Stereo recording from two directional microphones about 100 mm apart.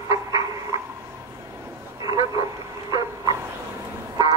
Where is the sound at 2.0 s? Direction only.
40° right (ahead or behind).